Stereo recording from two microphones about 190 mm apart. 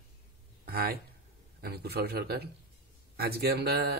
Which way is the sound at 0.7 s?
50° right (ahead or behind).